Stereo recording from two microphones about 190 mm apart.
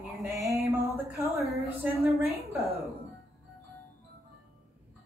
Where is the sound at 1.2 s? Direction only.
35° right (ahead or behind).